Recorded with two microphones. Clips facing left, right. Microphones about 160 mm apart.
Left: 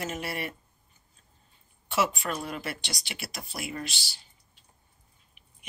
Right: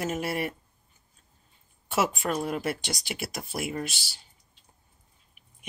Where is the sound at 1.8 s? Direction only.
45° right (ahead or behind).